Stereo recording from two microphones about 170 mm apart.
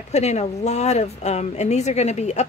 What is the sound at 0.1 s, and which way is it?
Speech, 40° left (ahead or behind).